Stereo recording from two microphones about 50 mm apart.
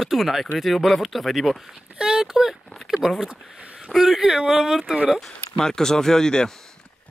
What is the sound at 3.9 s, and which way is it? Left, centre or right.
Speech, centre.